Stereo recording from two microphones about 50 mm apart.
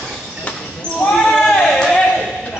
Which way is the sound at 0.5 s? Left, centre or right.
Left.